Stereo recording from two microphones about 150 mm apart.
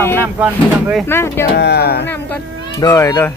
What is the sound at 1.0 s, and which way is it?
Speech, 15° left (ahead or behind).